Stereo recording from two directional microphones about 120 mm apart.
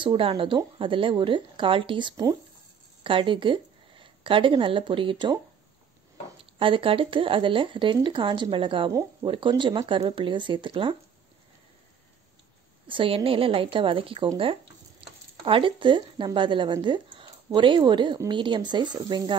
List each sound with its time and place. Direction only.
0.0 s speech: 45° right (ahead or behind)
6.3 s speech: 45° right (ahead or behind)
12.8 s a woman's voice: 45° right (ahead or behind)